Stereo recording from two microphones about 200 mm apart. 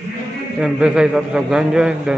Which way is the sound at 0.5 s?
5° right (ahead or behind).